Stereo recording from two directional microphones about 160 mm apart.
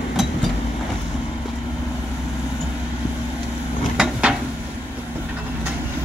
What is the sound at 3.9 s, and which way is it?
Drawer open or close, 5° right (ahead or behind).